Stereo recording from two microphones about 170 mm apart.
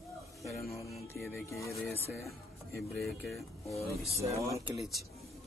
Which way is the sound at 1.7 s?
5° left (ahead or behind).